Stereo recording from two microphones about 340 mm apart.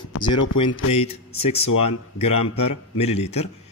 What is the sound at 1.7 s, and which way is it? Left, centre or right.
A man's voice, left.